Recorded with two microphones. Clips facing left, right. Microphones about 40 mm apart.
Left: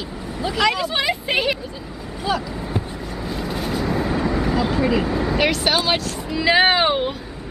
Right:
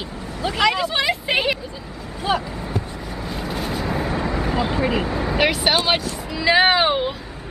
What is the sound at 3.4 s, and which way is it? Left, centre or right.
Vehicle, centre.